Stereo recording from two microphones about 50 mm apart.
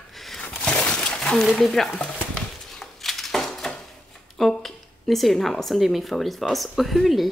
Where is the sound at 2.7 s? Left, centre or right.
Centre.